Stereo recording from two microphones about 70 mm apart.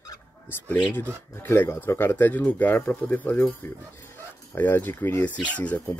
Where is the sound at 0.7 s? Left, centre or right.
Left.